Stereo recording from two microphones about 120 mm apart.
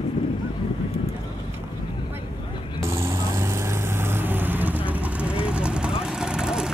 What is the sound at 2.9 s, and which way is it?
Vehicle, 25° right (ahead or behind).